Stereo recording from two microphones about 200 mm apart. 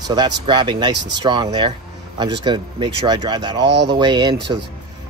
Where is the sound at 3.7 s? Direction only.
60° right (ahead or behind).